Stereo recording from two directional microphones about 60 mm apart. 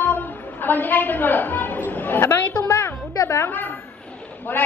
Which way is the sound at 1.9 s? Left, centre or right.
Left.